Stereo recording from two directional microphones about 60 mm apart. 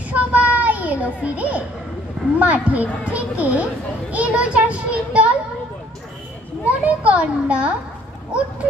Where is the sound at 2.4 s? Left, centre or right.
Right.